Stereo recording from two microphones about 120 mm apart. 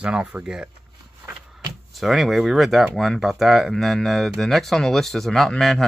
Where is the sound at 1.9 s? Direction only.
Centre (ahead or behind).